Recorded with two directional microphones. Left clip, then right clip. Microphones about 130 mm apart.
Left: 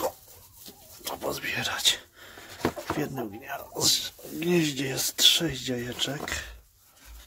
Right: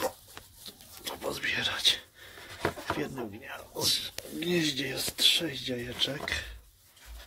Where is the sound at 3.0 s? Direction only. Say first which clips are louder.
Left 3 dB; 25° left (ahead or behind).